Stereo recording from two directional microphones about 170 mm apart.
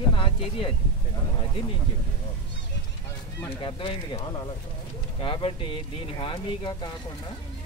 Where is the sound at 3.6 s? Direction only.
30° left (ahead or behind).